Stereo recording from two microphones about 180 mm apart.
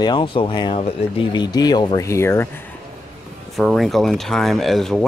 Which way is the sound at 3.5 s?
Centre (ahead or behind).